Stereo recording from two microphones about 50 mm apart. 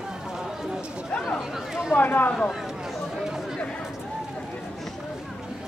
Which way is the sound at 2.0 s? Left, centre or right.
Left.